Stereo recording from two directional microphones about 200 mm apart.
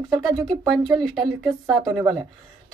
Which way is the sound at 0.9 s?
Centre (ahead or behind).